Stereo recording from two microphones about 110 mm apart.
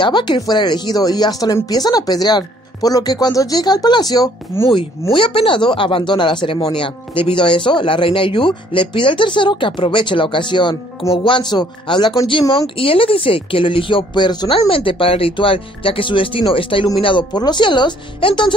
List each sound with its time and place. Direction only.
0.0 s speech: 45° left (ahead or behind)
4.5 s speech: 20° left (ahead or behind)
5.1 s speech: 55° left (ahead or behind)
14.7 s speech: 55° left (ahead or behind)